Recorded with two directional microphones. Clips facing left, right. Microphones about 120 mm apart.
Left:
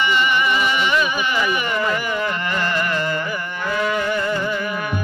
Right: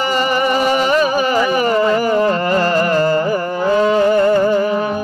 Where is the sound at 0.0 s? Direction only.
40° right (ahead or behind).